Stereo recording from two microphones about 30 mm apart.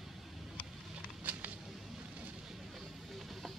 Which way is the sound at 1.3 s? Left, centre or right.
Right.